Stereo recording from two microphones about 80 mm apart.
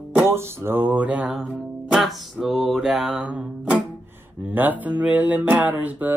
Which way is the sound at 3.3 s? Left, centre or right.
Centre.